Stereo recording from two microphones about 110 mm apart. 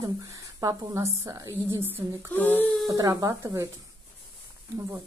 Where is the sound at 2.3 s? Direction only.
15° left (ahead or behind).